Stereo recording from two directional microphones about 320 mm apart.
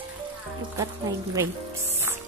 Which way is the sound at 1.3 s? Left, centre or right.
Centre.